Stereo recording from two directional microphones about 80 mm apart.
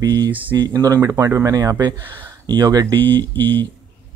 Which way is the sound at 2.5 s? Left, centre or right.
Right.